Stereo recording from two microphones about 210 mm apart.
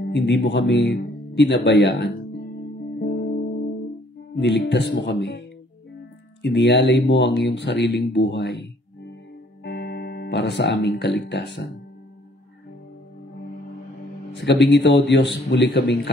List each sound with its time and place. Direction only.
0.0 s speech: 55° left (ahead or behind)
3.0 s music: 50° left (ahead or behind)
4.4 s speech: 55° left (ahead or behind)
6.4 s speech: 55° left (ahead or behind)
14.3 s speech: 60° left (ahead or behind)